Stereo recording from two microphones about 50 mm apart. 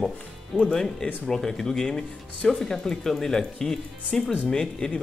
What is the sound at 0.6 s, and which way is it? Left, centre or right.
Speech, centre.